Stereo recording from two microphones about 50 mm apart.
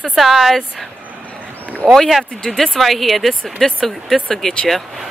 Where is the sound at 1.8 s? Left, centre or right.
Centre.